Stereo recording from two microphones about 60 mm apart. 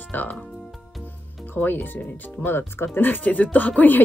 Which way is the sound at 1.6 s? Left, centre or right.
Left.